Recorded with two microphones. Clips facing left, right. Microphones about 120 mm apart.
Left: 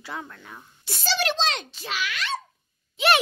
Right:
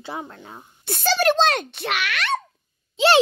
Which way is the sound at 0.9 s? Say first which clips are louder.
Right 7 dB; 55° right (ahead or behind).